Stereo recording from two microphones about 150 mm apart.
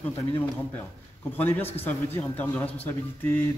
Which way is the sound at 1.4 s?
15° left (ahead or behind).